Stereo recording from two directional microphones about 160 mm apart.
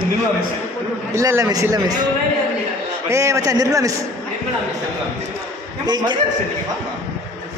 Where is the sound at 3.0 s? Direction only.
20° right (ahead or behind).